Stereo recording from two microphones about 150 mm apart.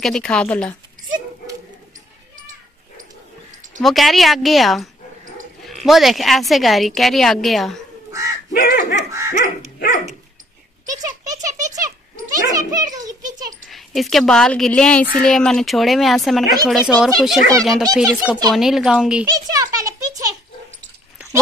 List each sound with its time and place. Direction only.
0.0 s speech: 5° left (ahead or behind)
3.8 s speech: centre (ahead or behind)
8.1 s crow: 20° right (ahead or behind)
8.5 s speech: 60° left (ahead or behind)
9.4 s dog: 60° left (ahead or behind)
10.9 s rattle: 25° right (ahead or behind)
12.3 s a child's voice: 25° right (ahead or behind)
13.7 s speech: centre (ahead or behind)
19.2 s a sound: 25° right (ahead or behind)